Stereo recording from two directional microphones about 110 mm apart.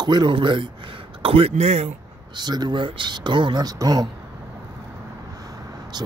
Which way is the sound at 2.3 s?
40° right (ahead or behind).